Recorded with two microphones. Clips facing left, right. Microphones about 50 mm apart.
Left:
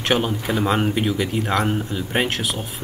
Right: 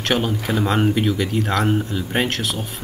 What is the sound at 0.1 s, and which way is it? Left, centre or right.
Speech, centre.